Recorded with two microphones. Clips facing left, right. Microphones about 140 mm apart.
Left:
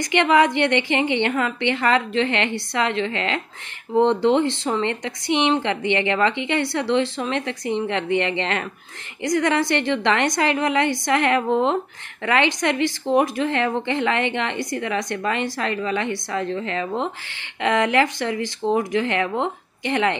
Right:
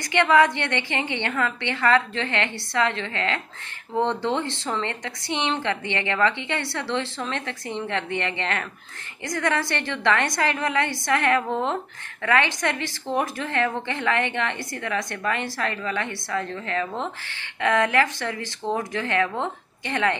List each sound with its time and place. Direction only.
0.0 s a woman's voice: 20° left (ahead or behind)